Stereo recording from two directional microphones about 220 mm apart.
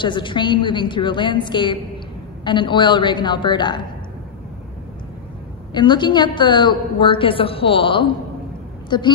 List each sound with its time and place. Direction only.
0.0 s a woman's voice: 20° left (ahead or behind)
5.7 s a woman's voice: 20° left (ahead or behind)